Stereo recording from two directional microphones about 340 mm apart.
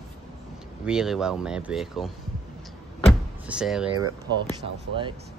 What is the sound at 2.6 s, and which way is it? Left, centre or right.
Vehicle, centre.